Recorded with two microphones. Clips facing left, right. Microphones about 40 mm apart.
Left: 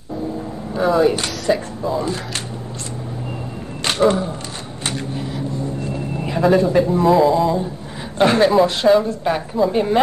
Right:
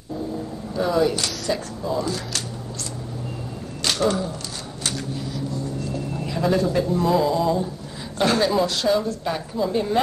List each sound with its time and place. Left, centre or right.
0.7 s a woman's voice: left
1.8 s speech: centre
3.8 s speech: left
4.8 s vehicle: left
6.4 s a woman's voice: left
8.2 s a woman's voice: left